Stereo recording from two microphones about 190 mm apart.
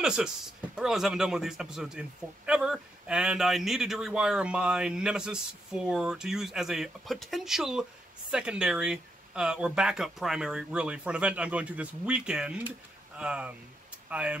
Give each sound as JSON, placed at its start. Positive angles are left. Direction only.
{"t": 0.0, "sound": "a man's voice", "side_deg": -5}